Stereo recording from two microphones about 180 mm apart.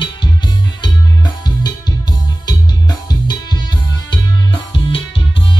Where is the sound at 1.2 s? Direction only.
20° left (ahead or behind).